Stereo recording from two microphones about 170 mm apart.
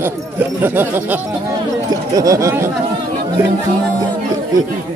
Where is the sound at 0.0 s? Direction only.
10° right (ahead or behind).